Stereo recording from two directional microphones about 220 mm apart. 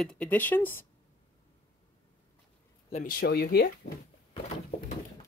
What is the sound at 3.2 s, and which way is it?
Speech, 45° left (ahead or behind).